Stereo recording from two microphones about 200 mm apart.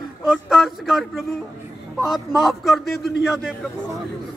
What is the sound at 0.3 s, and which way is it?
A man's voice, centre (ahead or behind).